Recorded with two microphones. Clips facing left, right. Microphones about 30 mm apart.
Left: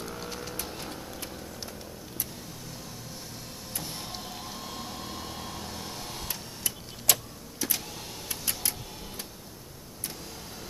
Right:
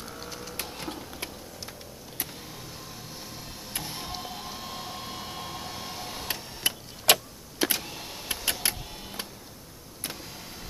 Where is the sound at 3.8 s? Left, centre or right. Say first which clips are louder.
Right 2 dB; centre.